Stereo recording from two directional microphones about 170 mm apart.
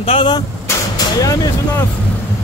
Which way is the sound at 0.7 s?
20° left (ahead or behind).